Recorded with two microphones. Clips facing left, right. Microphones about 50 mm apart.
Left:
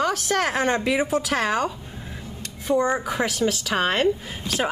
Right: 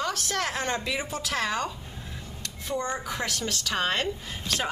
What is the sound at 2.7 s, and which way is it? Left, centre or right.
A woman's voice, centre.